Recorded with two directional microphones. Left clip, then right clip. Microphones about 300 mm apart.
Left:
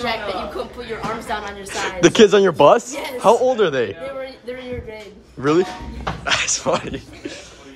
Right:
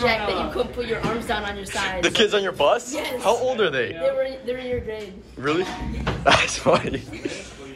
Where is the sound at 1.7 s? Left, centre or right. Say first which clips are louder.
Left 6 dB; left.